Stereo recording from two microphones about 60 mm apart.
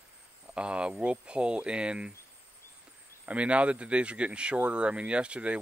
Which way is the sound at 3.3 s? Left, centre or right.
Right.